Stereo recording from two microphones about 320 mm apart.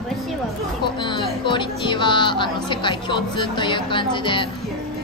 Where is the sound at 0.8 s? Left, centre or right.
Centre.